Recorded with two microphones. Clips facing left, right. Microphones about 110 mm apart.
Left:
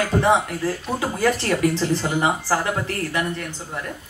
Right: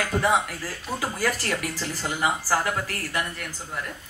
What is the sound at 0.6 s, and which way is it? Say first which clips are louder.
Speech: left 6 dB; 25° left (ahead or behind).